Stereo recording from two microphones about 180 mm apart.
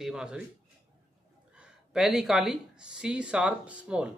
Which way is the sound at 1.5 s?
5° right (ahead or behind).